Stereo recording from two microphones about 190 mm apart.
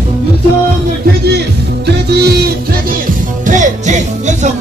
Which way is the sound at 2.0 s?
60° right (ahead or behind).